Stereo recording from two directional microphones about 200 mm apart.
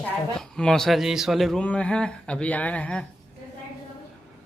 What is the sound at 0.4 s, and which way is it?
A man's voice, 5° left (ahead or behind).